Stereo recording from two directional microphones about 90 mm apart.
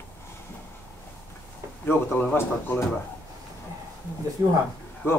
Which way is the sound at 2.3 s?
30° left (ahead or behind).